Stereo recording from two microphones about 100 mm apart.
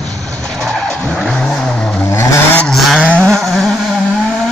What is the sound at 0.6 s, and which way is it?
Vehicle, 10° left (ahead or behind).